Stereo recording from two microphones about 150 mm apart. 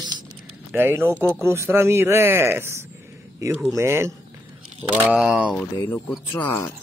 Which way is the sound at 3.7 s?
15° right (ahead or behind).